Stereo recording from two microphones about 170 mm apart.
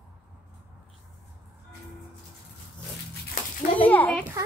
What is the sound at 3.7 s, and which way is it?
Speech, 10° left (ahead or behind).